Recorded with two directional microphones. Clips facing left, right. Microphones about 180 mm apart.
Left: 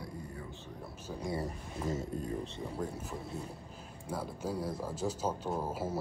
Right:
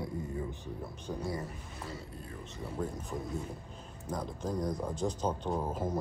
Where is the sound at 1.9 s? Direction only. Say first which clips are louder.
Left 11 dB; 45° left (ahead or behind).